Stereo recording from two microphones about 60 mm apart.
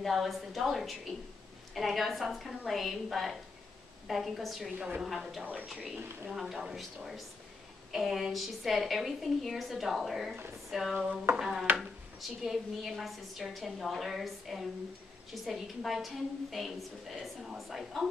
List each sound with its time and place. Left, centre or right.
0.0 s a woman's voice: centre
4.7 s a woman's voice: centre
5.0 s a woman's voice: centre
5.4 s a woman's voice: right
6.3 s a woman's voice: centre
10.7 s a sound: centre
11.3 s a woman's voice: centre